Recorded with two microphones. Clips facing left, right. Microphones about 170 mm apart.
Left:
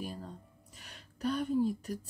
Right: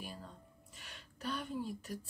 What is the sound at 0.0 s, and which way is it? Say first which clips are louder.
Music: left 7 dB; 40° left (ahead or behind).